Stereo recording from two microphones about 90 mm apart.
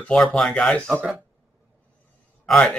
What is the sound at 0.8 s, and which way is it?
Speech, 20° right (ahead or behind).